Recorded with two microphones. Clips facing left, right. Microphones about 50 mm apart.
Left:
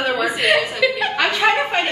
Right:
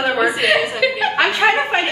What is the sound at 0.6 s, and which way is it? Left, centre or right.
Speech, centre.